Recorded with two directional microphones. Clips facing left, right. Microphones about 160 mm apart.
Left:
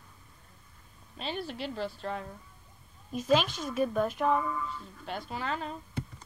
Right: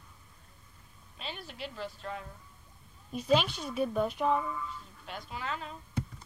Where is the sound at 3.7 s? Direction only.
5° right (ahead or behind).